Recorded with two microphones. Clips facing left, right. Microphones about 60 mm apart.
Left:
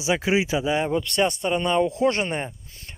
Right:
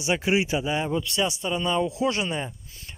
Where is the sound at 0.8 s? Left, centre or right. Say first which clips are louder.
Left 3 dB; left.